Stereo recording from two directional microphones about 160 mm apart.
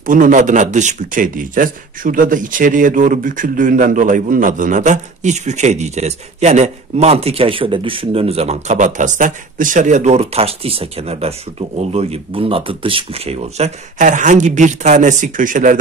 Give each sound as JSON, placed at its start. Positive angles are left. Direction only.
{"t": 0.0, "sound": "speech", "side_deg": -55}